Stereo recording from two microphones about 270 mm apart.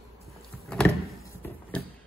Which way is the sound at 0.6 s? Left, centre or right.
Centre.